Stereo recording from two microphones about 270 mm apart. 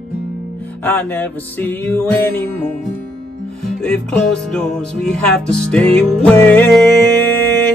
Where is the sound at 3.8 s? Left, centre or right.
Centre.